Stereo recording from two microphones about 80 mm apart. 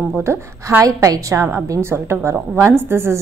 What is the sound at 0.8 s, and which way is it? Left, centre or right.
A woman's voice, right.